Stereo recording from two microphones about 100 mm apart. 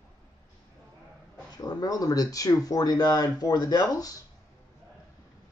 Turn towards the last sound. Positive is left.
turn(degrees=40)  # may be behind; listen again after turning